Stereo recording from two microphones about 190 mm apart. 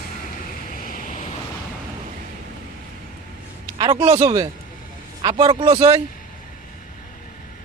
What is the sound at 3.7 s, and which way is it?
A man's voice, 25° right (ahead or behind).